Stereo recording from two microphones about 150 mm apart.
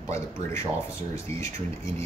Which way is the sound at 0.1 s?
20° left (ahead or behind).